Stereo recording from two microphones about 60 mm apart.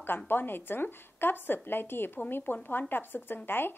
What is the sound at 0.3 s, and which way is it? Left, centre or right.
A woman's voice, left.